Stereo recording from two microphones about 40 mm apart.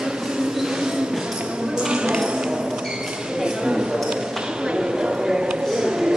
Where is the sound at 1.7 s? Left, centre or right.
Right.